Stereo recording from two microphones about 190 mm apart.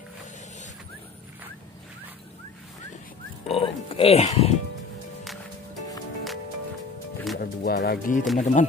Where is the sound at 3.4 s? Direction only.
30° left (ahead or behind).